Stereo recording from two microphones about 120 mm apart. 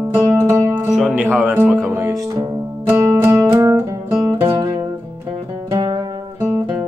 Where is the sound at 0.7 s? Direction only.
10° right (ahead or behind); by 2.6 s 35° right (ahead or behind).